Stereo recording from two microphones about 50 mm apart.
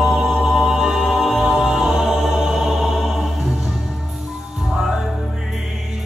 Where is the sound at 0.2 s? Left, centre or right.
Centre.